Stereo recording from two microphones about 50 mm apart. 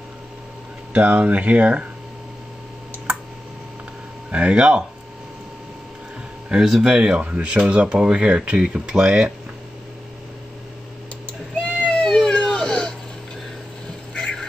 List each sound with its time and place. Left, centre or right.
0.9 s speech: right
4.3 s speech: right
6.5 s speech: centre
6.8 s speech: centre
11.9 s cat: centre
12.4 s baby cry: centre
14.1 s a sound: centre